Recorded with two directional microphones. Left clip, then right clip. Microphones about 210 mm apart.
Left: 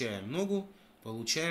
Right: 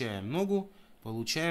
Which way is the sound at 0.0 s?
50° right (ahead or behind).